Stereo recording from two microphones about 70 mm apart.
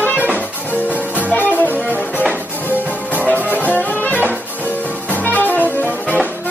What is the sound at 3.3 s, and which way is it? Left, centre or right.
Music, left.